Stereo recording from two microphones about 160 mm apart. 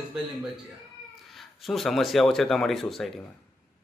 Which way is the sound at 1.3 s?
Centre (ahead or behind).